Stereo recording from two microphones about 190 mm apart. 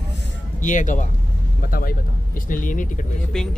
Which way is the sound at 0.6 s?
40° left (ahead or behind).